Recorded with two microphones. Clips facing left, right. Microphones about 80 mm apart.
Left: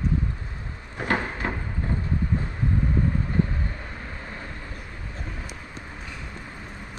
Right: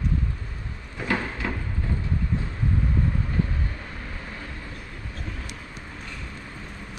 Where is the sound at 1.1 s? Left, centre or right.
Centre.